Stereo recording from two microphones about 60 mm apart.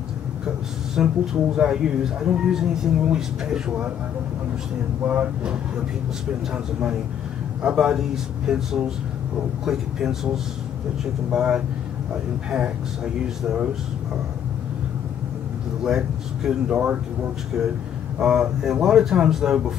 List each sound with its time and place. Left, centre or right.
0.9 s speech: centre
5.0 s speech: right
6.5 s speech: centre
15.8 s speech: centre
18.2 s speech: centre